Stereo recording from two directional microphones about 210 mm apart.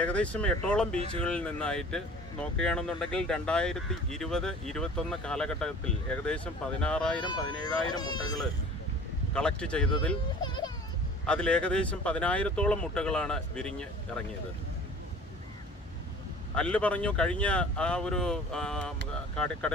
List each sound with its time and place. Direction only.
0.0 s speech: 5° left (ahead or behind)
7.2 s speech: 20° left (ahead or behind)
9.3 s speech: 5° left (ahead or behind)
10.4 s a sound: 20° left (ahead or behind)
11.2 s speech: 5° left (ahead or behind)
16.5 s speech: 5° left (ahead or behind)